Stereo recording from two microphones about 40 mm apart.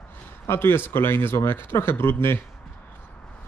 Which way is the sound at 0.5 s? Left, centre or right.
Left.